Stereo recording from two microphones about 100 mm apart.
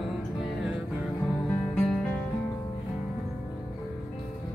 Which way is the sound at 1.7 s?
15° left (ahead or behind).